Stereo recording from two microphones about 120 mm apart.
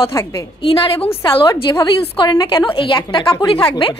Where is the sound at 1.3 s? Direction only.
40° left (ahead or behind).